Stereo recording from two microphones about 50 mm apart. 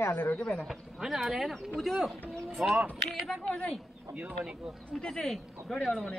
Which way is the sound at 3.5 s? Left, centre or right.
Centre.